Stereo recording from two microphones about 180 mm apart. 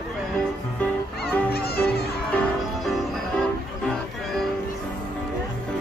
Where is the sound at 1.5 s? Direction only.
60° left (ahead or behind).